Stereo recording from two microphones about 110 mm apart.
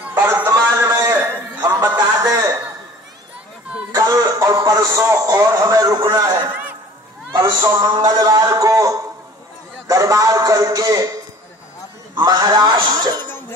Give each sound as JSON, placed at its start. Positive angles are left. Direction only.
{"t": 0.1, "sound": "music", "side_deg": -15}
{"t": 0.5, "sound": "a sound", "side_deg": -30}
{"t": 2.0, "sound": "a sound", "side_deg": -35}
{"t": 3.9, "sound": "music", "side_deg": -30}
{"t": 6.1, "sound": "a man's voice", "side_deg": -30}
{"t": 12.2, "sound": "a man's voice", "side_deg": -40}